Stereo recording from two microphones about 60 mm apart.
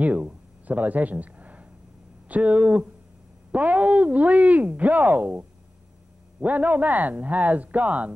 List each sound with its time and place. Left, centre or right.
0.0 s speech: right